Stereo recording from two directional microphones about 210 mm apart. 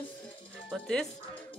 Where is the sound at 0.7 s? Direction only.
5° left (ahead or behind).